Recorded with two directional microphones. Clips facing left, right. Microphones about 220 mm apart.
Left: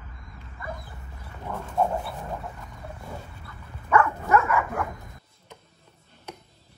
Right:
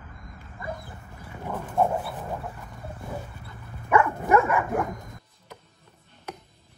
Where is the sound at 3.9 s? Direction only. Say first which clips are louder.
Right 1 dB; 15° right (ahead or behind).